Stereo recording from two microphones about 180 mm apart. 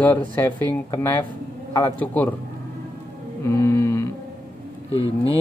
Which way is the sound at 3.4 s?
15° left (ahead or behind).